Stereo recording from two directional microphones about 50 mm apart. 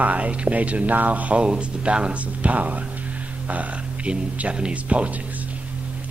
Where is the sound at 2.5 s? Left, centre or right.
Right.